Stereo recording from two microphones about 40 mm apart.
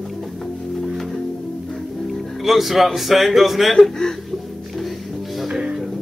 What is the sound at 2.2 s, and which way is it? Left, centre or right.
A man's voice, centre.